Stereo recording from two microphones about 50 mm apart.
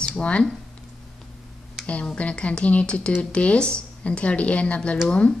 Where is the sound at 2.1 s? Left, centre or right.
Left.